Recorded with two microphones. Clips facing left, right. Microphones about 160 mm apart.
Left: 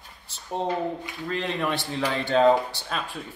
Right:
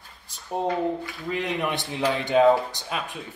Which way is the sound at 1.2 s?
10° right (ahead or behind).